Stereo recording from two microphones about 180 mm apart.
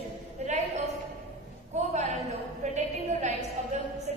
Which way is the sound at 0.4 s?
40° right (ahead or behind).